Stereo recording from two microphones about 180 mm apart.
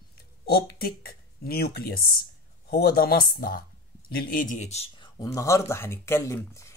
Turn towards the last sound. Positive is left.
turn(degrees=15)  # may be behind; listen again after turning